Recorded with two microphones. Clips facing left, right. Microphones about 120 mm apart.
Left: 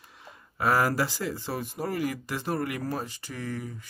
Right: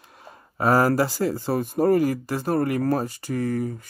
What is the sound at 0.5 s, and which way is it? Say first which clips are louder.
Speech: right 6 dB; 30° right (ahead or behind).